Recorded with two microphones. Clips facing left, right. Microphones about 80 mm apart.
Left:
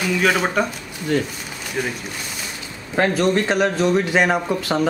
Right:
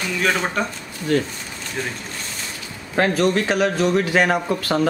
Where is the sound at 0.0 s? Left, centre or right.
Centre.